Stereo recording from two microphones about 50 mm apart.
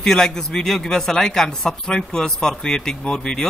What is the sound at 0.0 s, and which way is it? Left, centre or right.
Speech, centre.